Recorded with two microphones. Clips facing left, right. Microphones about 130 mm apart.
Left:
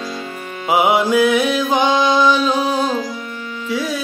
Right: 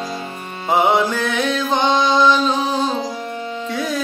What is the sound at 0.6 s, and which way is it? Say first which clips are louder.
Mantra: left 1 dB; 10° left (ahead or behind).